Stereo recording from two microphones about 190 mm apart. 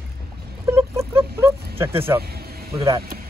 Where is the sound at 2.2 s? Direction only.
55° right (ahead or behind).